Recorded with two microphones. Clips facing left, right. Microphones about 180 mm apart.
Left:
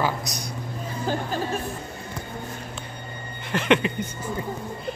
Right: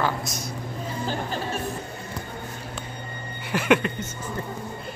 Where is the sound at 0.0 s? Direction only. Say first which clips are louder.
Even; centre (ahead or behind).